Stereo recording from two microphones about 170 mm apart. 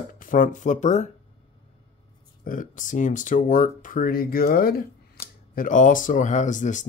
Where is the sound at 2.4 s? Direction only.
50° left (ahead or behind).